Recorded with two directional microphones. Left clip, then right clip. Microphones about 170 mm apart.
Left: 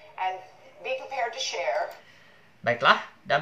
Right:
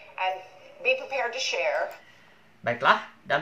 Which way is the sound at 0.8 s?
35° right (ahead or behind).